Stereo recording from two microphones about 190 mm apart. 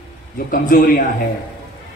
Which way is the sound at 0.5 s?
50° left (ahead or behind).